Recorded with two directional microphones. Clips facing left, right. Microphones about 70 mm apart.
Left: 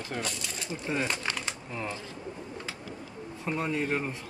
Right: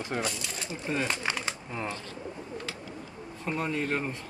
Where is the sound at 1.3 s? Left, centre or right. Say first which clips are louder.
Right 1 dB; centre.